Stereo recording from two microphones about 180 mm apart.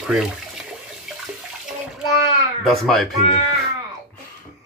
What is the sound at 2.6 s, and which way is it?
Speech, centre (ahead or behind).